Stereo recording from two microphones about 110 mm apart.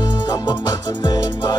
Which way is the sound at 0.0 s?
40° left (ahead or behind).